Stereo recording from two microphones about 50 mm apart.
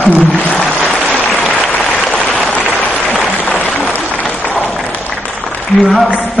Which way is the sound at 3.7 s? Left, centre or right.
Centre.